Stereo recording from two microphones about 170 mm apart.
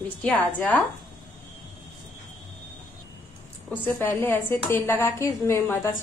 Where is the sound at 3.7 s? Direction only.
10° left (ahead or behind).